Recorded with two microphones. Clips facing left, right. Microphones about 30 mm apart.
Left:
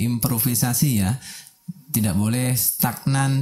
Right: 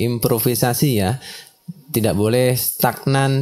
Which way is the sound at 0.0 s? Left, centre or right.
Right.